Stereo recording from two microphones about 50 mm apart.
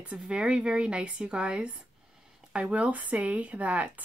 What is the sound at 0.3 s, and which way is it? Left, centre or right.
Speech, centre.